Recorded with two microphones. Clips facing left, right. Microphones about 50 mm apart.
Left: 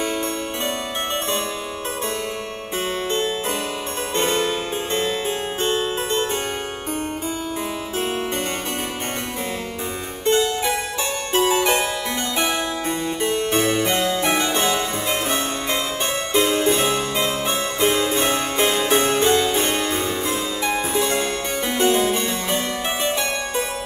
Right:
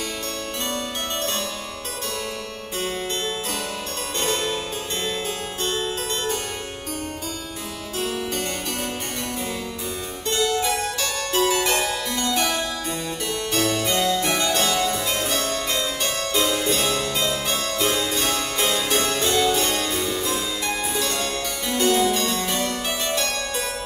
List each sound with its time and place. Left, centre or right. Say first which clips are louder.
4.2 s harpsichord: left 4 dB; left
5.6 s harpsichord: left 3 dB; left
10.2 s harpsichord: left 3 dB; left
13.2 s harpsichord: left 4 dB; left